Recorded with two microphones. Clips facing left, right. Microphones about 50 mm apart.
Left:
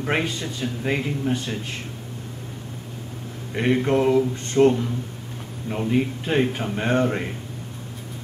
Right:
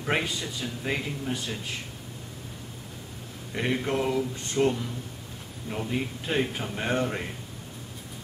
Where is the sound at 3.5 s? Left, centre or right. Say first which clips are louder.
Left 7 dB; centre.